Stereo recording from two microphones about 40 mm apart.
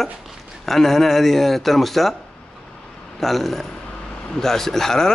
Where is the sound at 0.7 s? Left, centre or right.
Centre.